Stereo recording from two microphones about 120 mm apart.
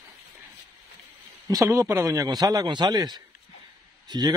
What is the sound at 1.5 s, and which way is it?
A man's voice, 25° right (ahead or behind).